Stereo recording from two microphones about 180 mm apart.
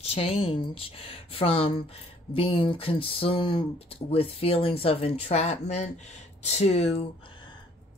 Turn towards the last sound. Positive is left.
turn(degrees=30)  # may be behind; listen again after turning